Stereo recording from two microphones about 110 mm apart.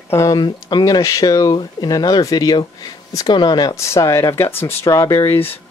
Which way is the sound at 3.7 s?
25° left (ahead or behind).